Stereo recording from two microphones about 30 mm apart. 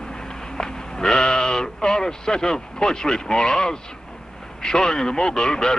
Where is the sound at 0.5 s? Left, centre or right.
Left.